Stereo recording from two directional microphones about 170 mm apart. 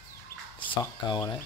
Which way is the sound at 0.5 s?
30° left (ahead or behind).